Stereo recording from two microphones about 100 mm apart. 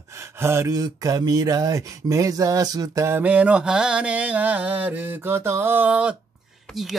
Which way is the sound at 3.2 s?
15° right (ahead or behind).